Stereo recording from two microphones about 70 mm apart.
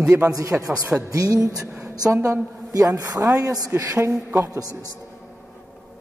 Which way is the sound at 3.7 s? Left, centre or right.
Right.